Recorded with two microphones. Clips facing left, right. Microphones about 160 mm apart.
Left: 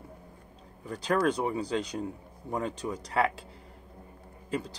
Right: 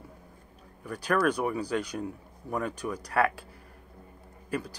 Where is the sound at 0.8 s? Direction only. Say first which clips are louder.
Even; 25° left (ahead or behind).